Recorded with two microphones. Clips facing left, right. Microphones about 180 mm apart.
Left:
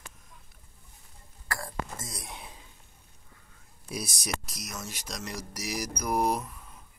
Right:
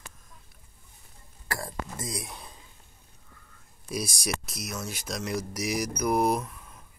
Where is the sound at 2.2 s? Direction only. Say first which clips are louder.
Even; centre (ahead or behind).